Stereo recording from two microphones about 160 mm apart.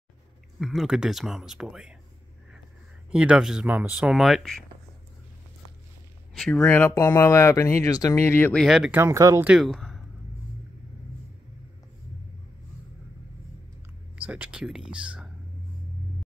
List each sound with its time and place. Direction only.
0.6 s speech: centre (ahead or behind)
3.1 s speech: 5° right (ahead or behind)
6.3 s speech: 5° left (ahead or behind)
8.6 s speech: centre (ahead or behind)
8.9 s speech: 15° right (ahead or behind)
9.4 s speech: 5° right (ahead or behind)
14.1 s speech: 10° right (ahead or behind)